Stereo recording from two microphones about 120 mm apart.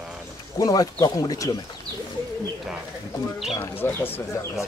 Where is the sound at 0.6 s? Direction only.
30° left (ahead or behind).